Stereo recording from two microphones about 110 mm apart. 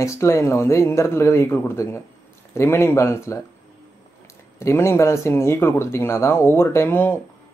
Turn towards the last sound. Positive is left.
turn(degrees=20)  # may be behind; listen again after turning